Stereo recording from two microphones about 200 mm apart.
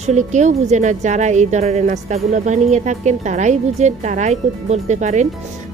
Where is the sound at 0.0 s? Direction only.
35° right (ahead or behind).